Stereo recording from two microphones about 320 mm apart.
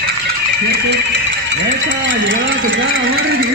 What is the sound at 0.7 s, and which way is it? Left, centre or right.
A man's voice, right.